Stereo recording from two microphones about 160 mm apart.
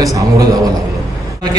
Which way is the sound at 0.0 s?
20° right (ahead or behind).